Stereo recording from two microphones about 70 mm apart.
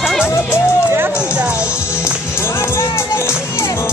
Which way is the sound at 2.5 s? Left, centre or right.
Left.